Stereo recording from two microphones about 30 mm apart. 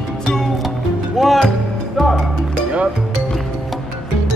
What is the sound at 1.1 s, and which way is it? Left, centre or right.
Music, centre.